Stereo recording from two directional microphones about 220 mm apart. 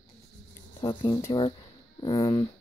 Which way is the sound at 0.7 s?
20° left (ahead or behind).